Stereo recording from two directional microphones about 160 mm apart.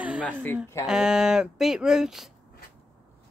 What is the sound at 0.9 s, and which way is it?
Speech, 5° right (ahead or behind).